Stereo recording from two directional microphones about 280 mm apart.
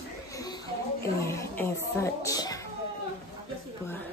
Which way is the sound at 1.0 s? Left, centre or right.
Centre.